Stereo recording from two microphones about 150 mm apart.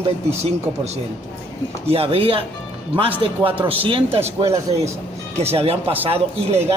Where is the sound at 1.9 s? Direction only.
40° right (ahead or behind).